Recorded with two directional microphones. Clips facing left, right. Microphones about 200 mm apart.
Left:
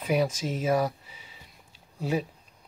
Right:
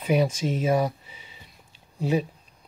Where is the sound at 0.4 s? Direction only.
5° left (ahead or behind).